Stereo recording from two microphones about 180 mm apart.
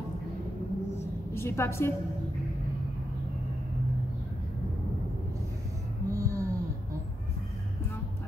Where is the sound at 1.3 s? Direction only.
15° left (ahead or behind).